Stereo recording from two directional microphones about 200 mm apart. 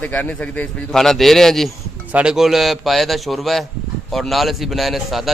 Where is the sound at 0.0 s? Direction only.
10° left (ahead or behind).